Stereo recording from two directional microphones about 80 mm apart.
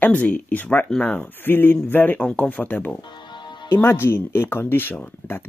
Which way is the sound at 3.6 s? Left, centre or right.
Left.